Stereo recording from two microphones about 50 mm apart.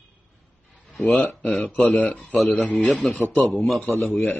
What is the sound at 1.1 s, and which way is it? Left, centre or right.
Speech, centre.